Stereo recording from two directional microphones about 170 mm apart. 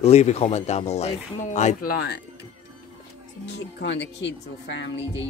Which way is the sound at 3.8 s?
90° left.